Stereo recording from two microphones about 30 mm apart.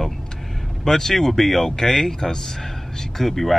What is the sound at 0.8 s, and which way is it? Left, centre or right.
Speech, centre.